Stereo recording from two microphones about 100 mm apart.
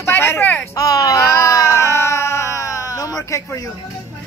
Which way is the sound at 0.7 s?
35° left (ahead or behind).